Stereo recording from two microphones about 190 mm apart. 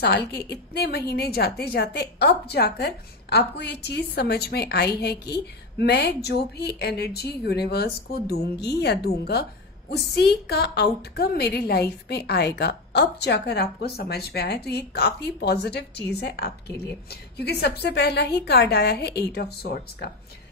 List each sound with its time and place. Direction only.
0.0 s speech: 60° left (ahead or behind)